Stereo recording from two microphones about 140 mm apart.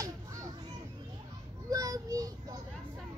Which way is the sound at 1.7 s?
25° right (ahead or behind).